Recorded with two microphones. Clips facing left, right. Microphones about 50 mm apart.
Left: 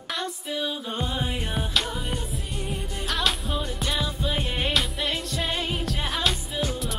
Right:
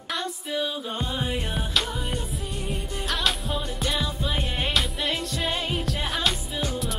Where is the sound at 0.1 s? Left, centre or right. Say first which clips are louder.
Right 1 dB; centre.